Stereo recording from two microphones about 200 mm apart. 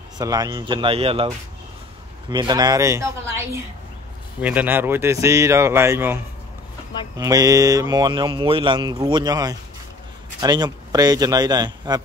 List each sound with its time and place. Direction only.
0.2 s speech: 20° right (ahead or behind)